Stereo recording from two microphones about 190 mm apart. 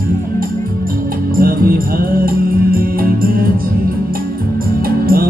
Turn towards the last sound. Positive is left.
turn(degrees=-50)  # may be behind; listen again after turning